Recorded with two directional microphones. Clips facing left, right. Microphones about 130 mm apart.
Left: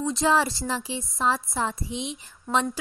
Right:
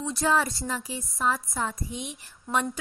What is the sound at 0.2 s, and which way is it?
A woman's voice, 30° left (ahead or behind).